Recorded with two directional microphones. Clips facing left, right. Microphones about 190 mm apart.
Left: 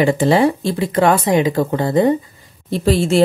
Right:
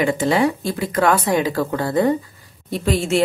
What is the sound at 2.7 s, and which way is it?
Speech, 30° left (ahead or behind).